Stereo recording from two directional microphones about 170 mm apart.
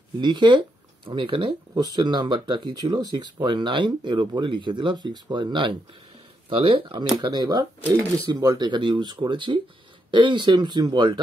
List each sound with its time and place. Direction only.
0.2 s speech: 25° right (ahead or behind)